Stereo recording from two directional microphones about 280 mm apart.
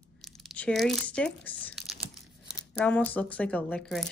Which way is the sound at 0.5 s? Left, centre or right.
Centre.